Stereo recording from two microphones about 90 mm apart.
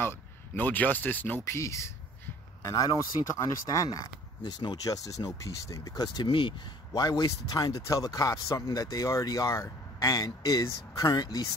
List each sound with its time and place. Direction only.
0.6 s speech: 20° left (ahead or behind)
1.4 s speech: 35° left (ahead or behind)
4.4 s speech: 55° left (ahead or behind)
6.2 s speech: 70° left (ahead or behind)
6.9 s speech: 45° left (ahead or behind)